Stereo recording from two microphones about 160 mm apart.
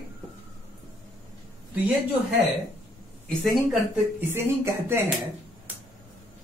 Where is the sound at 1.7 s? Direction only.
10° right (ahead or behind).